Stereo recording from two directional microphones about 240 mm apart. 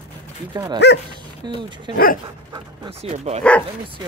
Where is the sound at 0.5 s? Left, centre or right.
Centre.